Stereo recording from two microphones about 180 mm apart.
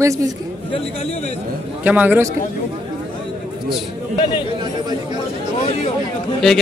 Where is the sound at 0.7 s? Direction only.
30° left (ahead or behind).